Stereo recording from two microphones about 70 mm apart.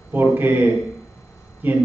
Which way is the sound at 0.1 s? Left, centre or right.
Right.